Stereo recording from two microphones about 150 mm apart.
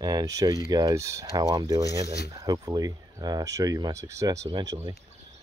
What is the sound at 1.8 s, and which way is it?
Speech, 90° left.